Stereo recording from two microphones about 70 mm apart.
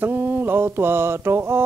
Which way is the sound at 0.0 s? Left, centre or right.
Right.